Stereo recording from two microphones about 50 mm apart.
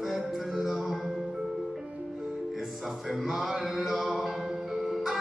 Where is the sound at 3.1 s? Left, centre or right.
Centre.